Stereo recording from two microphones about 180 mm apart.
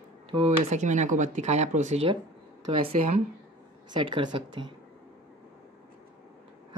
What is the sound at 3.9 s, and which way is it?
Speech, 25° right (ahead or behind).